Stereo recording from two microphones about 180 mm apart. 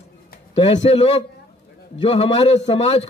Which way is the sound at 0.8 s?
35° left (ahead or behind).